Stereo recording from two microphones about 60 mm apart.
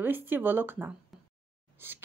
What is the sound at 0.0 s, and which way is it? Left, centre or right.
Speech, right.